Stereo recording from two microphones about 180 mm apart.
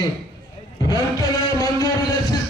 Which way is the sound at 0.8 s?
20° left (ahead or behind).